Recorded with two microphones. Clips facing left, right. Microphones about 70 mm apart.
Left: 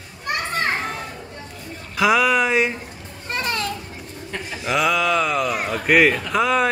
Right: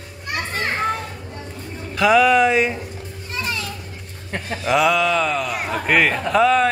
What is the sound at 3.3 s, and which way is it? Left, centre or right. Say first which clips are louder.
Children playing: left 3 dB; left.